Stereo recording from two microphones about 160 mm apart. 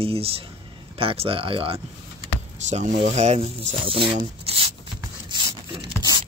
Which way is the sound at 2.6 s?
45° right (ahead or behind).